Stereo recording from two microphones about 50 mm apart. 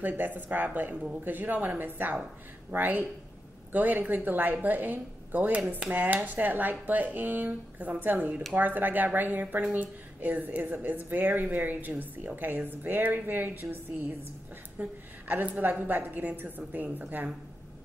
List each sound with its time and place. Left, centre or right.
0.0 s a woman's voice: right
14.8 s a woman's voice: right